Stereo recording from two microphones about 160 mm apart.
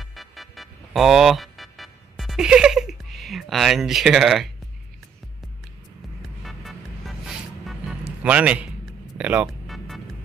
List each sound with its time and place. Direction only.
0.0 s music: centre (ahead or behind)
6.4 s music: centre (ahead or behind)
8.2 s a man's voice: 10° right (ahead or behind)
9.7 s music: centre (ahead or behind)